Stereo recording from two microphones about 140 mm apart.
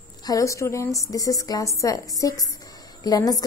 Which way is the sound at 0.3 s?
25° left (ahead or behind).